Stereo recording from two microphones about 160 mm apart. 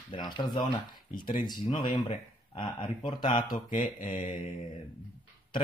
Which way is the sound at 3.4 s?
60° left (ahead or behind).